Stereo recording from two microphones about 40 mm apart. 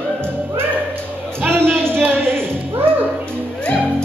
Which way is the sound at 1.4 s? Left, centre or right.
Right.